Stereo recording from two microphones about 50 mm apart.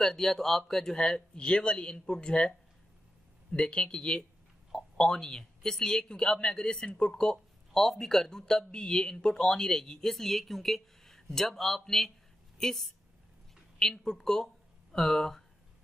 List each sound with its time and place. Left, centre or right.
0.0 s speech: centre
3.5 s speech: centre